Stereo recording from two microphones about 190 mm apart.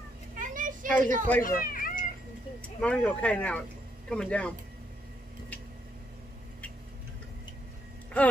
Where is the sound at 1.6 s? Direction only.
50° left (ahead or behind).